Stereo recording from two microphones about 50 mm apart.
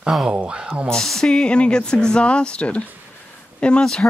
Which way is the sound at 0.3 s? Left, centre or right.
Right.